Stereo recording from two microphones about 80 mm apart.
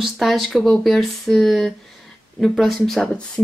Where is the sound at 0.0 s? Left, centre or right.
Centre.